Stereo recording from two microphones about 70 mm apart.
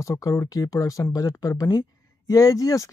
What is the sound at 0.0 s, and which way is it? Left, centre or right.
Speech, left.